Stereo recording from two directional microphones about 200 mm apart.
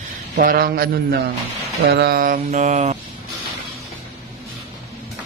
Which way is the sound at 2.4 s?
35° right (ahead or behind).